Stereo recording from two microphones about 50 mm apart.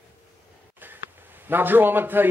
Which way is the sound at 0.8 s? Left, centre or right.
Right.